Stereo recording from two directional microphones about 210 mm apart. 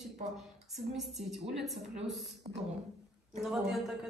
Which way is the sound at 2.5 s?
25° right (ahead or behind).